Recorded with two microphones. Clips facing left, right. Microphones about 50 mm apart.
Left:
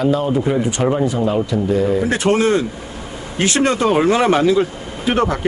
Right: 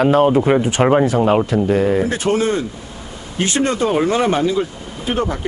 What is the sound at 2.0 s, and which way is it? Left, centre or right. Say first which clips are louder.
Speech: left 2 dB; left.